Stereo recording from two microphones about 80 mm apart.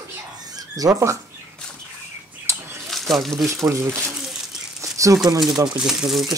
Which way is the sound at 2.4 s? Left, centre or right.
Right.